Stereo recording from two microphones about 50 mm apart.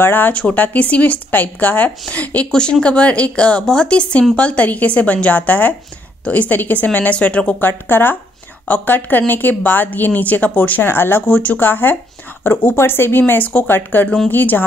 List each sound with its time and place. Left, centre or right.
0.0 s speech: left
0.3 s speech: left
2.5 s speech: centre
7.6 s a woman's voice: left
10.9 s a woman's voice: left
11.2 s a woman's voice: left
13.3 s speech: left
13.7 s a woman's voice: left